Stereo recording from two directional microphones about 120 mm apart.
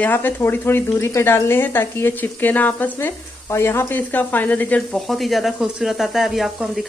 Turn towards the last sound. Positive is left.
turn(degrees=0)  # may be behind; listen again after turning